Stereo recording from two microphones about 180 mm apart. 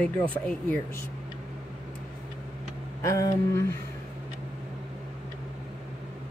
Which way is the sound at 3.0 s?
15° left (ahead or behind).